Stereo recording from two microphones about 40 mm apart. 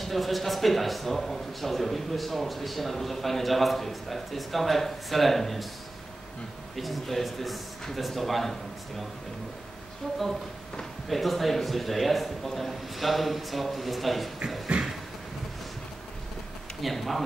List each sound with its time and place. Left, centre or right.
0.0 s a man's voice: centre
6.8 s a man's voice: centre
10.0 s a woman's voice: centre
11.1 s a man's voice: centre
14.7 s a sound: right
16.8 s a man's voice: centre